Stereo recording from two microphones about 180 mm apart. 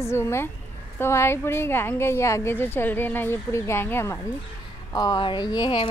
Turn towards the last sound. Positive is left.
turn(degrees=25)  # may be behind; listen again after turning